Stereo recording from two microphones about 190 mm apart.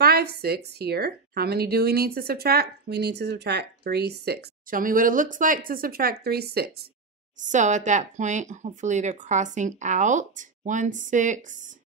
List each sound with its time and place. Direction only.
0.0 s a woman's voice: 55° right (ahead or behind)
7.3 s speech: 40° right (ahead or behind)